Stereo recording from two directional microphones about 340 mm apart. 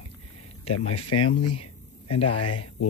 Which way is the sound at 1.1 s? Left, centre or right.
Left.